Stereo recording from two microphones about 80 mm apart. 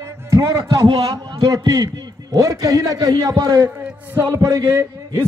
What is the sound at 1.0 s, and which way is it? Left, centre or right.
A man's voice, right.